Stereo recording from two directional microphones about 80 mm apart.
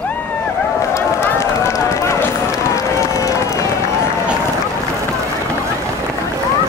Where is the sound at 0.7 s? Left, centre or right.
Left.